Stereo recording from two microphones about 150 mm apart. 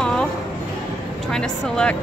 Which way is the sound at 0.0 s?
5° left (ahead or behind).